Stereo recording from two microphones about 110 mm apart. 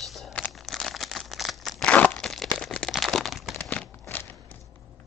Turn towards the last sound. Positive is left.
turn(degrees=15)  # may be behind; listen again after turning